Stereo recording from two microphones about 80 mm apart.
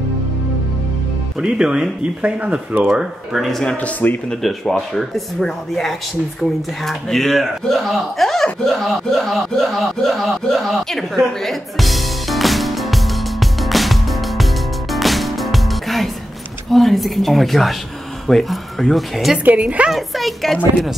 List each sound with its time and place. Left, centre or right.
1.4 s a woman's voice: centre
2.2 s speech: centre
2.9 s speech: centre
3.7 s speech: centre
4.3 s speech: centre
8.6 s chuckle: centre
16.7 s speech: centre
19.3 s a woman's voice: centre
19.9 s speech: centre